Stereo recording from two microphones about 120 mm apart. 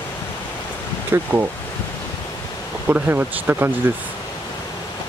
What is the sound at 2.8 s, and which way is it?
Speech, 15° right (ahead or behind).